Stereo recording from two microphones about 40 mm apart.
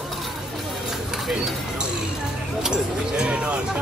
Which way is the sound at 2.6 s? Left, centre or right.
Centre.